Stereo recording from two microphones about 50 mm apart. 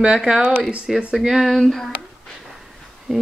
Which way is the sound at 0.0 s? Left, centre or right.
Centre.